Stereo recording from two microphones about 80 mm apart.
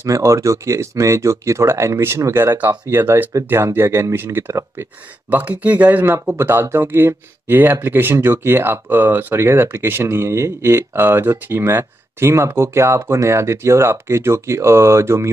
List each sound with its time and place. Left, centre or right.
0.0 s speech: right